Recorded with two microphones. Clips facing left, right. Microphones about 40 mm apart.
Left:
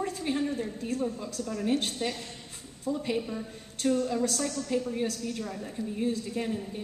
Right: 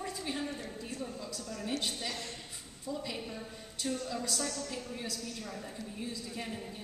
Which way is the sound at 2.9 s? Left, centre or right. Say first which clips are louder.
Left 7 dB; left.